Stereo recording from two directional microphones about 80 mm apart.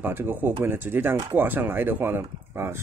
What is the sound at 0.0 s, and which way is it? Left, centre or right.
Speech, right.